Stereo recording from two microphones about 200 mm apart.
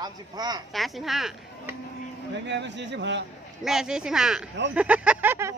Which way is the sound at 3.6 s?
5° right (ahead or behind).